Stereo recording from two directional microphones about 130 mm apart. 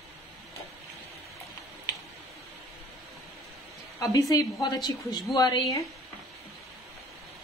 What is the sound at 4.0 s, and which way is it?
A woman's voice, 25° left (ahead or behind).